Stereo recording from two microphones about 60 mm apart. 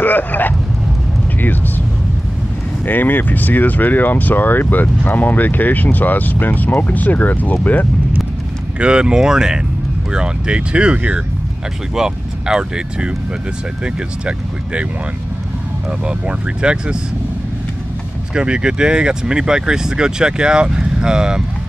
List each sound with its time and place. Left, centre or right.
0.0 s vehicle: left
2.8 s speech: left
8.7 s speech: centre
11.9 s speech: centre
16.1 s speech: centre
18.3 s speech: centre